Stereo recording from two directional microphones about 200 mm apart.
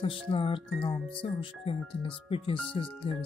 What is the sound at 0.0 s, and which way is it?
Speech, 25° left (ahead or behind).